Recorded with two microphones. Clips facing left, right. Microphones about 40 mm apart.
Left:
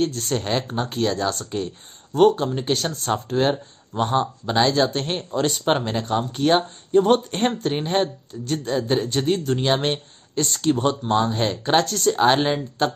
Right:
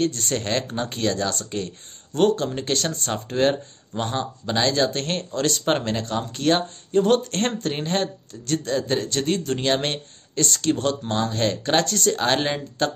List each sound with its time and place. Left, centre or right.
0.0 s a man's voice: centre